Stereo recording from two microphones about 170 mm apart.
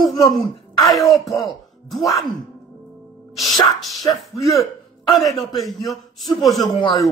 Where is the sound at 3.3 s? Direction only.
Centre (ahead or behind).